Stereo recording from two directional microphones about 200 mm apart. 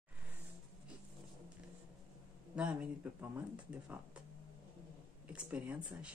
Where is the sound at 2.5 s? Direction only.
5° right (ahead or behind).